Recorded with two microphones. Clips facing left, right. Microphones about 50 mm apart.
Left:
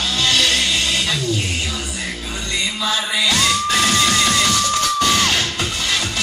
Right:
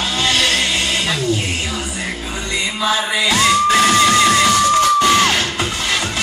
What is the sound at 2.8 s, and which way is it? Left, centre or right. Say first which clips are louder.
Music: right 4 dB; right.